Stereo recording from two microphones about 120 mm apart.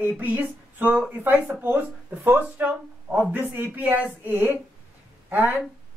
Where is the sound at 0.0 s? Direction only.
15° right (ahead or behind).